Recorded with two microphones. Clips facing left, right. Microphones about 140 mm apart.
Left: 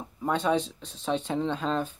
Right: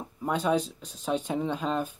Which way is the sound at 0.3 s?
10° right (ahead or behind).